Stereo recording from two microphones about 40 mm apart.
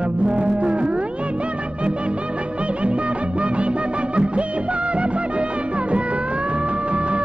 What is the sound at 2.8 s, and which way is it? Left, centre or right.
Music, right.